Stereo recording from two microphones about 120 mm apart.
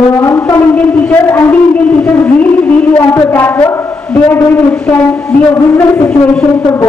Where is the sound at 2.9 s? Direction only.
15° left (ahead or behind).